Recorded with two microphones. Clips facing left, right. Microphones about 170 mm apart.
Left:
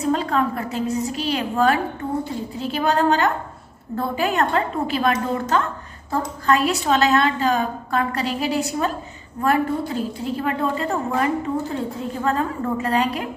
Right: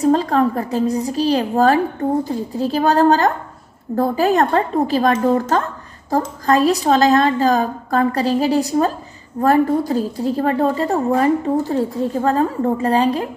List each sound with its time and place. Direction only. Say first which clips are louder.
0.0 s a woman's voice: right 6 dB; 35° right (ahead or behind)